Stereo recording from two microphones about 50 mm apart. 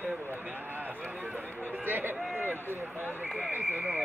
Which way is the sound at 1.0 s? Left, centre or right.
Right.